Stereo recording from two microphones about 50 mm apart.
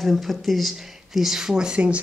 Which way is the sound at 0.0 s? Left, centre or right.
Centre.